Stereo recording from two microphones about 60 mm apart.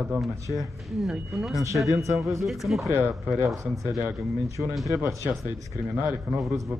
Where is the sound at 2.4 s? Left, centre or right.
Centre.